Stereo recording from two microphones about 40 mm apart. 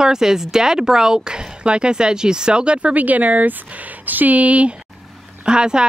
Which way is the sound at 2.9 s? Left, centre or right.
Right.